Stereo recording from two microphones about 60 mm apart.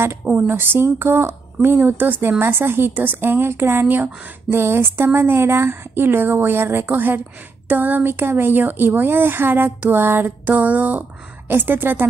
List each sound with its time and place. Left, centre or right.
0.2 s a woman's voice: right
0.5 s speech: right